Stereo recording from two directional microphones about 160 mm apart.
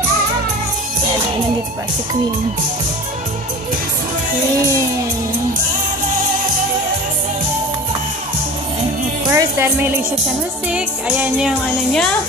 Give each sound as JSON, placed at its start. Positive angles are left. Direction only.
{"t": 9.3, "sound": "speech", "side_deg": -15}
{"t": 10.7, "sound": "music", "side_deg": -10}